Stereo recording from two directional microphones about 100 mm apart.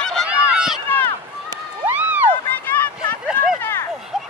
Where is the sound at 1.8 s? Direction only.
15° right (ahead or behind).